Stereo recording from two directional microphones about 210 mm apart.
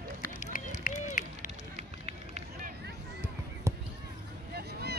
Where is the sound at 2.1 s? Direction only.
30° right (ahead or behind).